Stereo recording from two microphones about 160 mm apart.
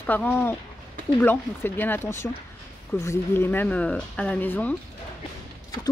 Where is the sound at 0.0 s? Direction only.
10° left (ahead or behind).